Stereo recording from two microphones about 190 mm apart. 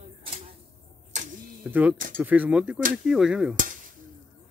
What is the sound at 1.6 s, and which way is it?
Speech, 10° right (ahead or behind).